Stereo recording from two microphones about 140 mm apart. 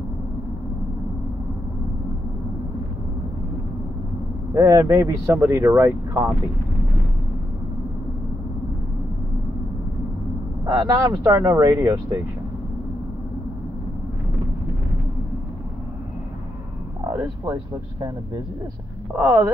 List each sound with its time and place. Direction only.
4.6 s speech: 25° right (ahead or behind)
10.6 s speech: 30° right (ahead or behind)
17.0 s a sound: 25° right (ahead or behind)
19.1 s speech: 20° right (ahead or behind)